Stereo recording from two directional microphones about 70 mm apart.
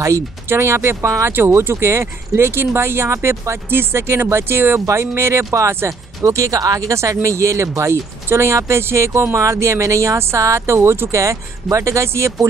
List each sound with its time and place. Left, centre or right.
0.5 s speech: right
7.0 s speech: right